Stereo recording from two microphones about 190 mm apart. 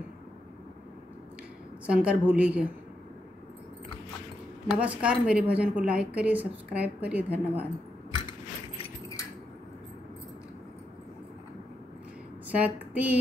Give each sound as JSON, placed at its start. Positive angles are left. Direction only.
{"t": 1.9, "sound": "a woman's voice", "side_deg": -5}
{"t": 4.6, "sound": "a woman's voice", "side_deg": -5}
{"t": 8.3, "sound": "keys jangling", "side_deg": 25}
{"t": 12.4, "sound": "speech", "side_deg": -10}